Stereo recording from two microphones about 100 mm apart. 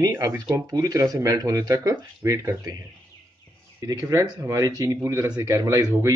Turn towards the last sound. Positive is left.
turn(degrees=-30)  # may be behind; listen again after turning